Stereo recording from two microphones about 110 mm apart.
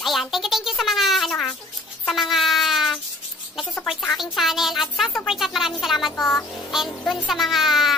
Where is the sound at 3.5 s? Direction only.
Centre (ahead or behind).